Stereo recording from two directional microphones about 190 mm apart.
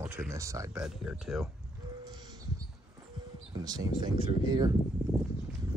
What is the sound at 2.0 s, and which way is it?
Bird, 20° right (ahead or behind).